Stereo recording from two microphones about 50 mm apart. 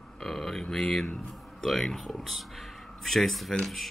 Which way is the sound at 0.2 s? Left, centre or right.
Centre.